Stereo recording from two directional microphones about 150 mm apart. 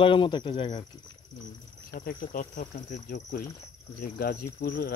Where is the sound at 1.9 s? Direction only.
75° left (ahead or behind); by 3.4 s 55° left (ahead or behind).